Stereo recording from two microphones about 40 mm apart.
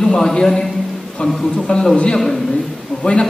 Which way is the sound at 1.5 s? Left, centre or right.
Centre.